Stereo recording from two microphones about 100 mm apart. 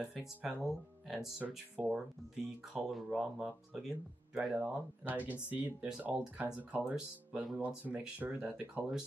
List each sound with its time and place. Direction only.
0.0 s speech: 5° right (ahead or behind)
4.6 s speech: 15° right (ahead or behind)